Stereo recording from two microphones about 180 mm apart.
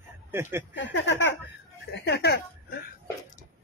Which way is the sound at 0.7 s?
80° left.